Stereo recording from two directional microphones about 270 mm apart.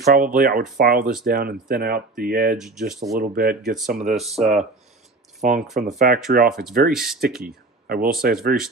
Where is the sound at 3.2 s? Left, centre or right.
Right.